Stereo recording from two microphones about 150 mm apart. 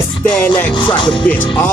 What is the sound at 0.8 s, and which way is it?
Music, 30° left (ahead or behind).